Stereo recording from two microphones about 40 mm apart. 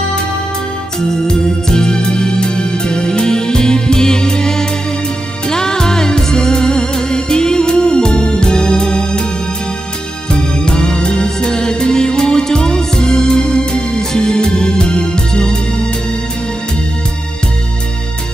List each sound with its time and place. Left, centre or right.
1.1 s music: centre
10.3 s music: left